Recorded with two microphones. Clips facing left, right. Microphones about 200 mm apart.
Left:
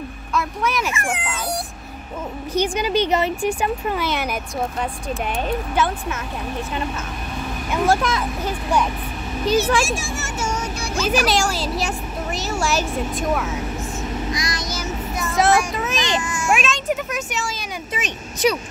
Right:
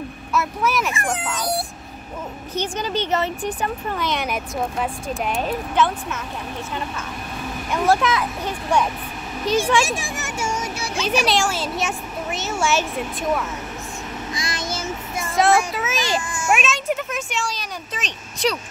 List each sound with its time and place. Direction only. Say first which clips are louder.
0.3 s speech: right 1 dB; 5° right (ahead or behind)
0.9 s speech: right 1 dB; 35° right (ahead or behind)
2.5 s speech: left 5 dB; 10° left (ahead or behind)
7.7 s speech: even; centre (ahead or behind)
9.8 s a child's voice: left 1 dB; 15° right (ahead or behind); by 12.8 s centre (ahead or behind)
14.3 s child singing: left 1 dB; 30° right (ahead or behind)
15.3 s speech: even; centre (ahead or behind)